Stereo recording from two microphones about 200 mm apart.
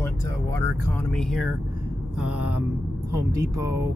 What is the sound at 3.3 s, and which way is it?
Speech, 15° right (ahead or behind).